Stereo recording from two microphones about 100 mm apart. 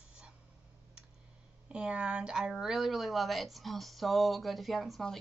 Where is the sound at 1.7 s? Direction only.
10° right (ahead or behind).